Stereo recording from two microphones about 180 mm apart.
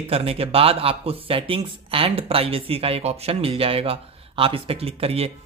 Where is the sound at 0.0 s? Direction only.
30° right (ahead or behind).